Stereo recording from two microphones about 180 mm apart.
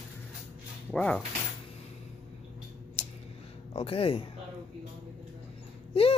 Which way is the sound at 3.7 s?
30° left (ahead or behind).